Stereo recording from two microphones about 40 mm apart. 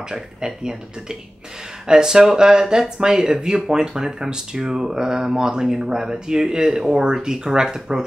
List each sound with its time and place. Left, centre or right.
1.9 s speech: centre